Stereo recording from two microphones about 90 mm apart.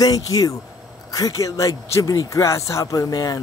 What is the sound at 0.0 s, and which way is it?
Speech, 45° left (ahead or behind).